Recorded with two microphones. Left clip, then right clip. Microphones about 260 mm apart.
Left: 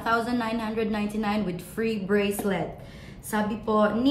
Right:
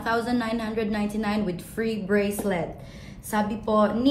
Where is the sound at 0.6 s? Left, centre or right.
Centre.